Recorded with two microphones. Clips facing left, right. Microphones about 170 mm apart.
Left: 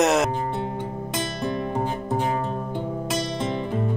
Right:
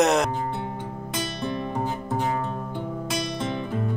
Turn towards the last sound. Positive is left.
turn(degrees=20)  # may be behind; listen again after turning